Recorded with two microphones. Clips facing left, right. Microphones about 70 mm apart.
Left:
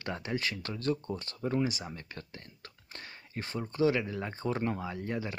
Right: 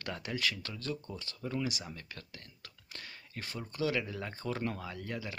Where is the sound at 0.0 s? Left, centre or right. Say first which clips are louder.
Left 2 dB; left.